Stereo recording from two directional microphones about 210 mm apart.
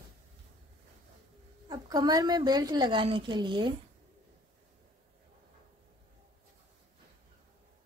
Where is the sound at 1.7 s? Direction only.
20° right (ahead or behind).